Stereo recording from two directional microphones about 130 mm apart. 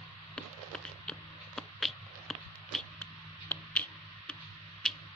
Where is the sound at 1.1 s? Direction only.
5° left (ahead or behind).